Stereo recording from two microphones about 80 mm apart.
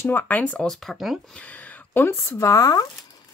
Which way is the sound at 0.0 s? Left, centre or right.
Left.